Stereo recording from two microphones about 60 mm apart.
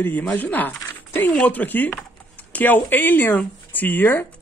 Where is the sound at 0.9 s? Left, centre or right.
Left.